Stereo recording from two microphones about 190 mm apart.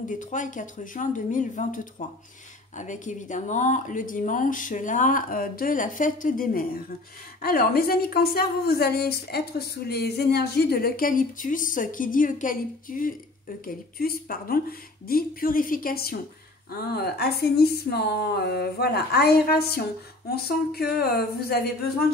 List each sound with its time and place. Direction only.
0.1 s a woman's voice: 40° left (ahead or behind)